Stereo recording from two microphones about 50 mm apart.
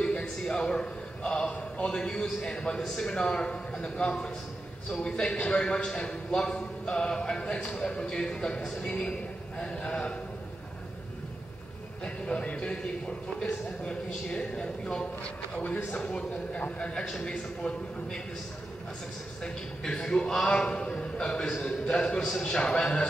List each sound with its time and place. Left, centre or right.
0.0 s a sound: centre
1.5 s a man's voice: centre
9.6 s a man's voice: centre
12.0 s a man's voice: left
16.0 s a man's voice: centre
19.4 s a man's voice: centre